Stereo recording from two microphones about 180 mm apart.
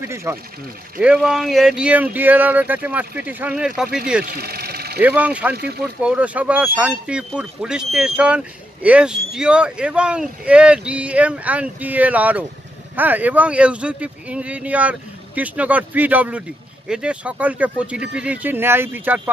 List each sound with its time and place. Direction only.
0.0 s speech: 15° right (ahead or behind)
4.3 s engine: 60° right (ahead or behind)
5.0 s speech: 10° right (ahead or behind)